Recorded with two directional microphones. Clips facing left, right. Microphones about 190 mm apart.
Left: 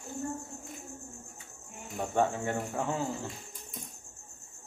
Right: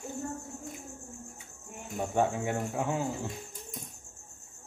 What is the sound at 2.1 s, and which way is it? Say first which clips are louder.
Speech: even; 10° right (ahead or behind).